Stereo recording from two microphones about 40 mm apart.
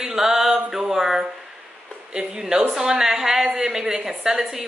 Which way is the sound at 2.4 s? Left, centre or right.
Right.